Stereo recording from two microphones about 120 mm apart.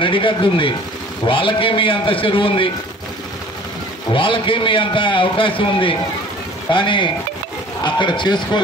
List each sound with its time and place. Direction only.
0.0 s a man's voice: 45° left (ahead or behind)
4.1 s a man's voice: 45° left (ahead or behind)